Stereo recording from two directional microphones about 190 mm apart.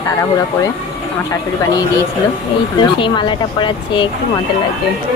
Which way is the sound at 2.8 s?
25° left (ahead or behind).